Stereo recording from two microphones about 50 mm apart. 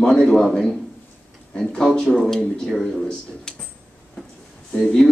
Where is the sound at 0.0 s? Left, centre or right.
Centre.